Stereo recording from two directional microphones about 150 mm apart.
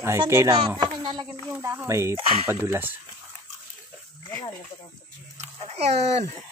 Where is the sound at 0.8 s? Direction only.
30° right (ahead or behind).